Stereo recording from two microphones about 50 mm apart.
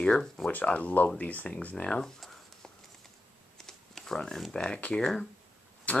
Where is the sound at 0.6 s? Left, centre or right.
Left.